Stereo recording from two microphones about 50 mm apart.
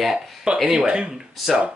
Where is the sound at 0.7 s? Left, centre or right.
Centre.